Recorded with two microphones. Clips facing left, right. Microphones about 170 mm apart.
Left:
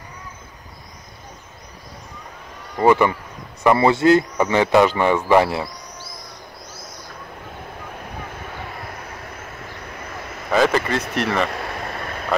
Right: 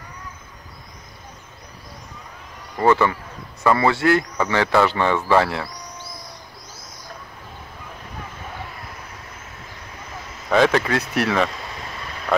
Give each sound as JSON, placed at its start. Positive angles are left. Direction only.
{"t": 2.8, "sound": "a man's voice", "side_deg": 15}
{"t": 10.5, "sound": "speech", "side_deg": 0}
{"t": 11.5, "sound": "vehicle", "side_deg": 60}
{"t": 12.3, "sound": "vehicle", "side_deg": 0}